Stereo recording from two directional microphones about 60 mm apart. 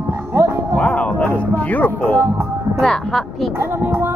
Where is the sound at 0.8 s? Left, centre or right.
Centre.